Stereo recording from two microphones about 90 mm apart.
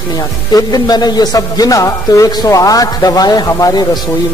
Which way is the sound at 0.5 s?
50° left (ahead or behind).